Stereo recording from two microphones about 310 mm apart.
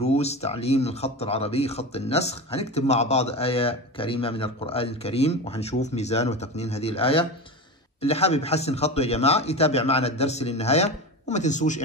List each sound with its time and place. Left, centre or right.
0.0 s a man's voice: left